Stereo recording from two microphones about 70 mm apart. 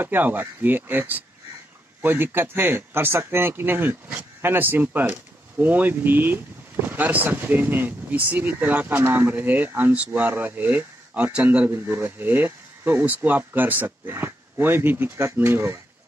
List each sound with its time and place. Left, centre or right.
0.0 s speech: right
11.7 s speech: right